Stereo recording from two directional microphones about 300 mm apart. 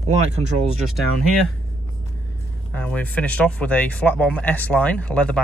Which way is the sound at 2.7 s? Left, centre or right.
Centre.